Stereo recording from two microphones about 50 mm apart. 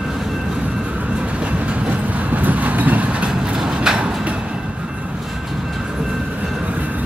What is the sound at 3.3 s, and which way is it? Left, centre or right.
Vehicle, centre.